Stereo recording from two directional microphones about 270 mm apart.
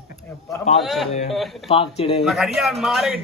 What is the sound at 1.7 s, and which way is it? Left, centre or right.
Speech, left.